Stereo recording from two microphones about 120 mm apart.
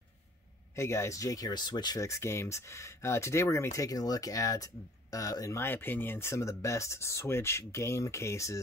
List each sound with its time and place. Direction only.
0.7 s speech: 25° left (ahead or behind)